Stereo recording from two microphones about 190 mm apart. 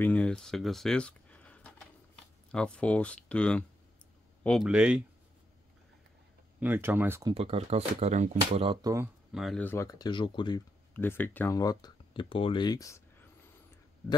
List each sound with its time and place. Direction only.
0.0 s speech: 5° left (ahead or behind)
6.6 s speech: 10° right (ahead or behind)
7.3 s speech: 35° right (ahead or behind)
8.8 s speech: 15° right (ahead or behind)
9.3 s speech: centre (ahead or behind); by 10.6 s 25° left (ahead or behind)
10.9 s speech: 10° left (ahead or behind)